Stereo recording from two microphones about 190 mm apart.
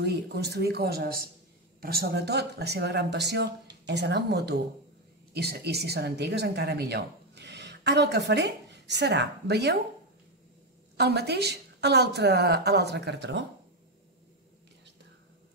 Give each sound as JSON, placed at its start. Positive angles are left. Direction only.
{"t": 0.0, "sound": "a woman's voice", "side_deg": -60}
{"t": 11.0, "sound": "a woman's voice", "side_deg": -60}